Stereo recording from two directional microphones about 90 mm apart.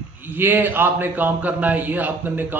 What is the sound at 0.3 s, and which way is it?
A man's voice, 20° right (ahead or behind).